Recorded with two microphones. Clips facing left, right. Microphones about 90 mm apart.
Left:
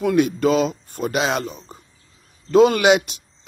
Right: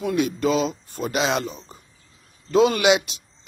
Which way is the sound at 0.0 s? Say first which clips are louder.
Left 4 dB; 55° left (ahead or behind).